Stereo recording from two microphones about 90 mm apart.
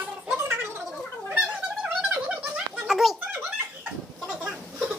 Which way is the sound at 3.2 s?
20° right (ahead or behind).